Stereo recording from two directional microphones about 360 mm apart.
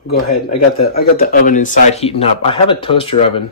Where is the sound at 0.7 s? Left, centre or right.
Left.